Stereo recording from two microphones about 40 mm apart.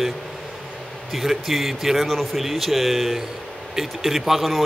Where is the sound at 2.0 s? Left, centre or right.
Centre.